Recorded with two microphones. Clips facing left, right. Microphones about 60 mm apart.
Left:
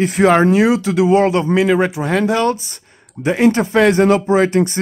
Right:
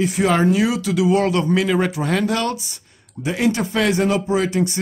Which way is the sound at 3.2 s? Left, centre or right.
Left.